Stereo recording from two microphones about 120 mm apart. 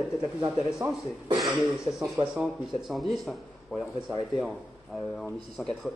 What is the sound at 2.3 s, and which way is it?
Speech, 5° right (ahead or behind).